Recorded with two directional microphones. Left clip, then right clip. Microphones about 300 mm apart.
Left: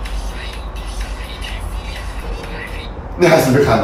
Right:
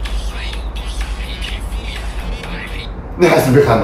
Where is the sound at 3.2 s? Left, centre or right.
Centre.